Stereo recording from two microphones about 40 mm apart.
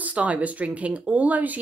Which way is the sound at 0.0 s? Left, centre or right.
Right.